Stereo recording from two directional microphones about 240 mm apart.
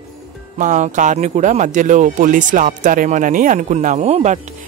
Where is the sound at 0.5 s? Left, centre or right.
Right.